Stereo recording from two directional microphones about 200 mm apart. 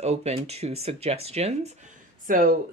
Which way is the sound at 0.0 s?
30° right (ahead or behind).